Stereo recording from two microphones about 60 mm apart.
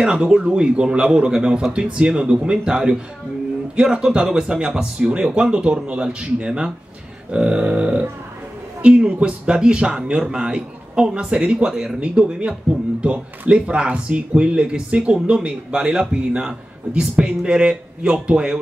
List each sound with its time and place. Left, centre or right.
0.0 s speech: centre
12.0 s speech: right